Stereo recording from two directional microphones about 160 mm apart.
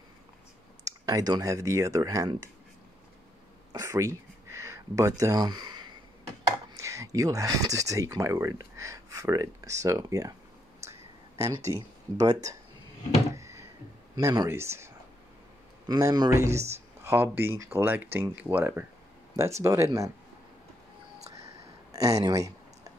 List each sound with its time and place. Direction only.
0.8 s speech: 20° right (ahead or behind)
3.7 s a sound: 20° right (ahead or behind)
6.7 s speech: 20° right (ahead or behind)
10.8 s a sound: 20° right (ahead or behind)
11.7 s speech: 20° right (ahead or behind)
13.3 s a sound: 20° right (ahead or behind)
14.1 s speech: 25° right (ahead or behind)
15.9 s speech: 25° right (ahead or behind)
21.9 s speech: 20° right (ahead or behind)